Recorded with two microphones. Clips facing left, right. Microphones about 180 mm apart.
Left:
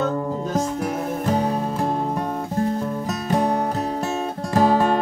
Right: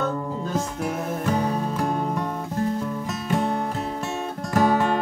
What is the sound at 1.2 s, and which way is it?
Music, 30° left (ahead or behind).